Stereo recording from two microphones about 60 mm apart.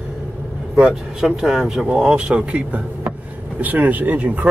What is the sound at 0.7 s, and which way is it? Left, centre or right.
Speech, centre.